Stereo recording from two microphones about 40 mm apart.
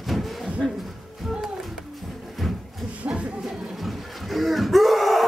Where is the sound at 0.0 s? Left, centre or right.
Centre.